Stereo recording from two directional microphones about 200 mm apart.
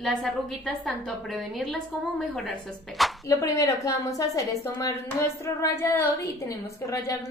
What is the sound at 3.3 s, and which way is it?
A woman's voice, 15° left (ahead or behind).